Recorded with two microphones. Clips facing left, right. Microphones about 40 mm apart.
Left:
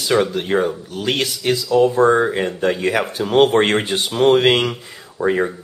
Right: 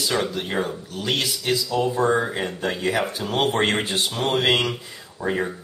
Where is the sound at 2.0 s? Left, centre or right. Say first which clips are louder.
Left 6 dB; left.